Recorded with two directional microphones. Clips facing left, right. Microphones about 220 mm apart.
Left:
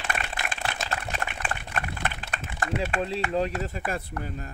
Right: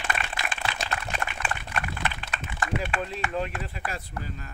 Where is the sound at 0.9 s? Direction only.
40° left (ahead or behind).